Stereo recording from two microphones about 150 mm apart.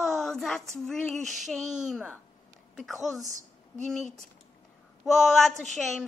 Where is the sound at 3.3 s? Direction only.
55° right (ahead or behind).